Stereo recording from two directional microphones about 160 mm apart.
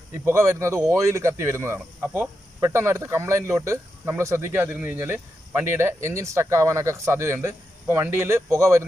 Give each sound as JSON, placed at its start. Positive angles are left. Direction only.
{"t": 0.2, "sound": "speech", "side_deg": -15}